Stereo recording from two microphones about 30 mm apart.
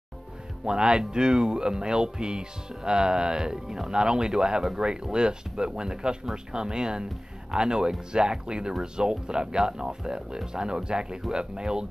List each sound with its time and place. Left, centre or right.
0.7 s speech: right